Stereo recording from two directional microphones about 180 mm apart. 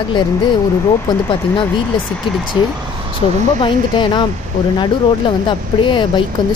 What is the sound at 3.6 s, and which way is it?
Speech, 25° left (ahead or behind).